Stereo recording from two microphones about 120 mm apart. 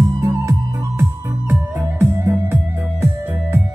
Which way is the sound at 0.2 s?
25° right (ahead or behind).